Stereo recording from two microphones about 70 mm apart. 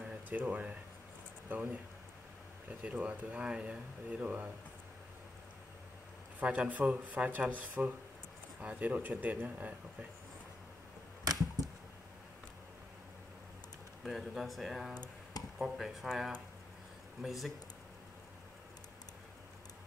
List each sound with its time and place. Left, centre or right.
0.3 s speech: right
2.8 s speech: centre
6.4 s speech: centre
11.2 s a sound: right
14.0 s speech: centre